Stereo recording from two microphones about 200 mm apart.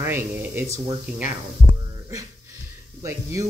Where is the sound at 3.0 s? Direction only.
15° right (ahead or behind).